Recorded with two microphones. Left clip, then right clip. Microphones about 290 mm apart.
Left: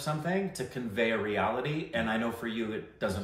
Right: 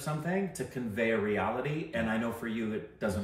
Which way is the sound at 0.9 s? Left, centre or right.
Centre.